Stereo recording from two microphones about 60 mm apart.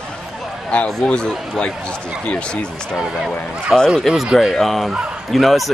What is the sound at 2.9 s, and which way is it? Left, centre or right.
Speech, centre.